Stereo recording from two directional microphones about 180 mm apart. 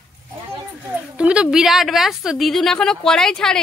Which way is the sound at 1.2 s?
5° right (ahead or behind).